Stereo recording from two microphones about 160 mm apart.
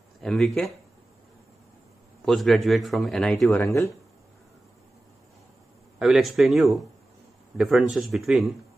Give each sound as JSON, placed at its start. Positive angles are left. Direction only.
{"t": 0.2, "sound": "a man's voice", "side_deg": 5}
{"t": 2.2, "sound": "a man's voice", "side_deg": 0}
{"t": 3.6, "sound": "speech", "side_deg": 15}
{"t": 5.9, "sound": "a man's voice", "side_deg": 0}